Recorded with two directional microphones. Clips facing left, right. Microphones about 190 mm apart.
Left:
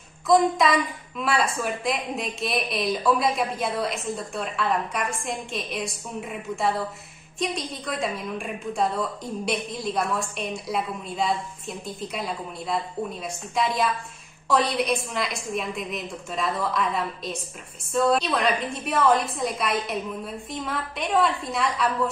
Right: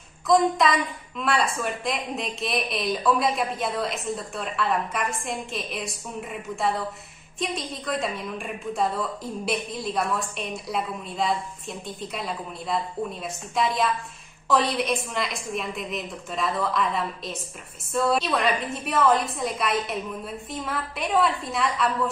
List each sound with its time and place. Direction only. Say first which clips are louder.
0.3 s a woman's voice: left 1 dB; centre (ahead or behind)